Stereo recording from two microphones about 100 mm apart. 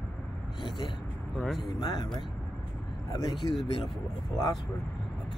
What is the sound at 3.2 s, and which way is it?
Speech, 55° left (ahead or behind).